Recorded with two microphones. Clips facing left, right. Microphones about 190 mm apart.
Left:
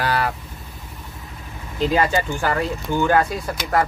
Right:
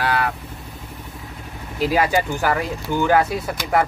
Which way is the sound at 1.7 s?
10° right (ahead or behind).